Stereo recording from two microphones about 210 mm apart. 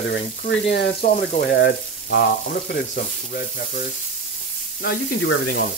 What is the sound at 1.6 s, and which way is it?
Speech, 60° left (ahead or behind).